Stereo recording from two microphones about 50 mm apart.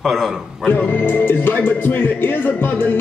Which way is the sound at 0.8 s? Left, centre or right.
Left.